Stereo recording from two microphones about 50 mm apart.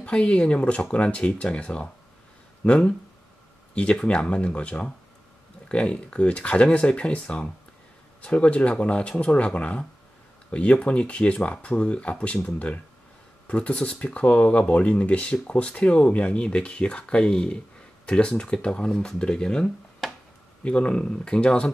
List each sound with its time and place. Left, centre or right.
0.0 s speech: left
20.0 s a sound: centre
20.6 s speech: left